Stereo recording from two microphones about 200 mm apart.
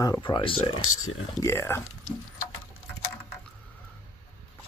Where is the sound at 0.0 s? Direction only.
20° left (ahead or behind).